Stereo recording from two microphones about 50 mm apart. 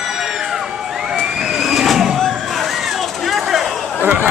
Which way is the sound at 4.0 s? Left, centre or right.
Right.